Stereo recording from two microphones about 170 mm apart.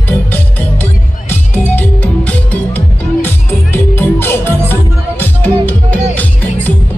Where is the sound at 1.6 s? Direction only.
10° left (ahead or behind).